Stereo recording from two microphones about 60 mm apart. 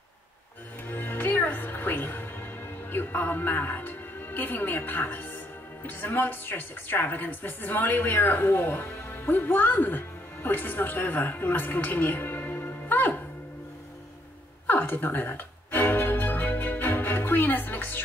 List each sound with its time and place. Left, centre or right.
0.8 s music: left
2.9 s a woman's voice: left
14.7 s music: left